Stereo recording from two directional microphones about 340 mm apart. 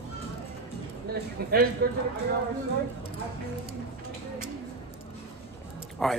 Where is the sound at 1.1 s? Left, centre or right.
Right.